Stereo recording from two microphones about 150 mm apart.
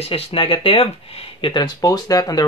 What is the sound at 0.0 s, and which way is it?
Speech, 40° left (ahead or behind).